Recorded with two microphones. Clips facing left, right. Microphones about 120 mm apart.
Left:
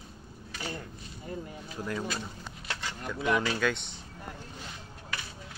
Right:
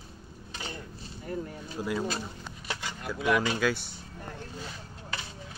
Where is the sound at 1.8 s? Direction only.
10° right (ahead or behind).